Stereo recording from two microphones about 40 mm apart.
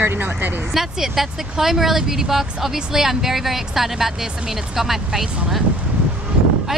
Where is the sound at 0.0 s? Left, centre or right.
Right.